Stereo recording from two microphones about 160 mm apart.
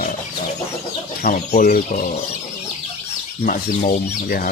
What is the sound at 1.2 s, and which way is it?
Speech, 60° left (ahead or behind).